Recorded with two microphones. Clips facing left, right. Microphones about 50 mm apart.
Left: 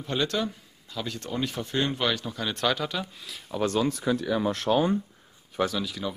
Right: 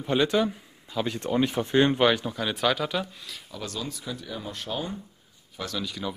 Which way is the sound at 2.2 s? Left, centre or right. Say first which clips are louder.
Right 2 dB; centre.